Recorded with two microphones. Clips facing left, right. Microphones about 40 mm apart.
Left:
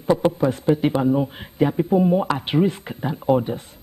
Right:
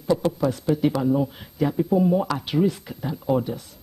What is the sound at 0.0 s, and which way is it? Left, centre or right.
A woman's voice, left.